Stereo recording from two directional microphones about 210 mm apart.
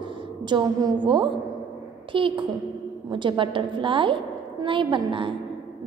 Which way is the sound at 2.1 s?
25° right (ahead or behind).